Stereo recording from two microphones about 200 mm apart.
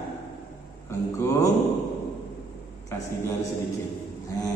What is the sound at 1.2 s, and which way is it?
Speech, 15° left (ahead or behind).